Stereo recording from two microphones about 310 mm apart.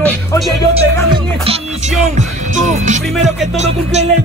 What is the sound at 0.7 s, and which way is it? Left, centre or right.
Music, centre.